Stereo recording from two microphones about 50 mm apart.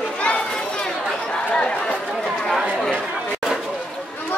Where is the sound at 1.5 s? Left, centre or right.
Centre.